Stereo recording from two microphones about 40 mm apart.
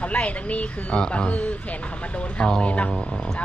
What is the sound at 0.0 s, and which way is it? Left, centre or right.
Speech, left.